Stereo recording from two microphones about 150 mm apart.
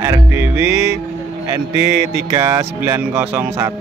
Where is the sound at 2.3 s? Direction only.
25° right (ahead or behind).